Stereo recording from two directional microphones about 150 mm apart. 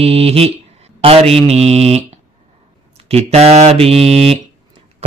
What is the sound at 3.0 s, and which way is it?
Speech, 45° right (ahead or behind).